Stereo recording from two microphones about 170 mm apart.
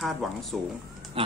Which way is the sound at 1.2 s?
35° right (ahead or behind).